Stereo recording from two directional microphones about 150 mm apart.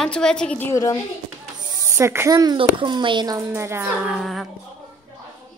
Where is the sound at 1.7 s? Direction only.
20° right (ahead or behind).